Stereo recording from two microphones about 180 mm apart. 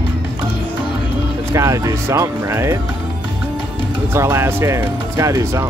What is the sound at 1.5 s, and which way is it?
Speech, 15° right (ahead or behind).